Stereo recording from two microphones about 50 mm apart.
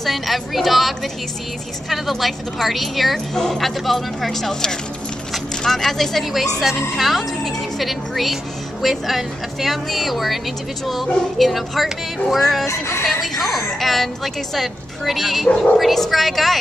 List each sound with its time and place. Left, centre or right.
0.0 s speech: centre
12.6 s speech: left
13.0 s speech: centre